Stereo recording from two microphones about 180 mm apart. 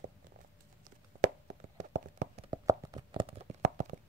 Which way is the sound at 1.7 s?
45° right (ahead or behind).